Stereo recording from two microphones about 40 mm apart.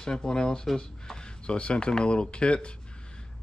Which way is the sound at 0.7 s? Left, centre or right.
Centre.